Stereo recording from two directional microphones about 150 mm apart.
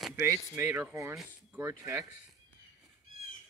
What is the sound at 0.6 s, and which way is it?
Speech, 15° right (ahead or behind).